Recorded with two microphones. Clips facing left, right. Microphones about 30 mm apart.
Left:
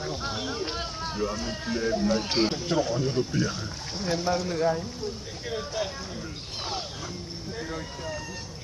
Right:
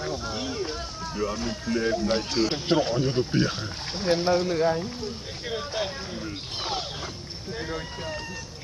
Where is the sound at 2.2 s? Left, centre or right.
Left.